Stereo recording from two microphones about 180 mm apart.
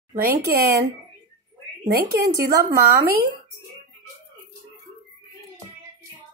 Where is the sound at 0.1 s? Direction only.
55° right (ahead or behind).